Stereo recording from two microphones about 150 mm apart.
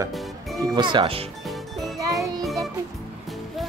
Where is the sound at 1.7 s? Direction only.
Centre (ahead or behind).